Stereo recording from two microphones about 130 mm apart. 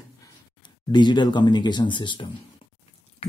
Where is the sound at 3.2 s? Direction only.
50° left (ahead or behind).